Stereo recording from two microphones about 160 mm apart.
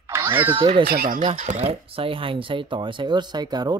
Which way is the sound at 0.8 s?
65° right (ahead or behind).